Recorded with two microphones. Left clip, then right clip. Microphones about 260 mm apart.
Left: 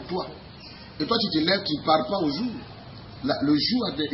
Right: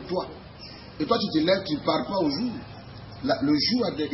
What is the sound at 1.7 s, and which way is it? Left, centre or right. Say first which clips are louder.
A man's voice: left 4 dB; centre.